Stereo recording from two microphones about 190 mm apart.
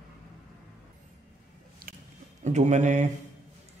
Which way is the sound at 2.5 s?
40° right (ahead or behind).